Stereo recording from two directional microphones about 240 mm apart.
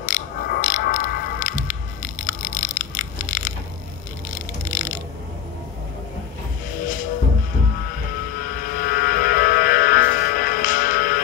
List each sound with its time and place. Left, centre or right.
0.0 s music: left
4.6 s a sound: left
8.4 s vehicle: left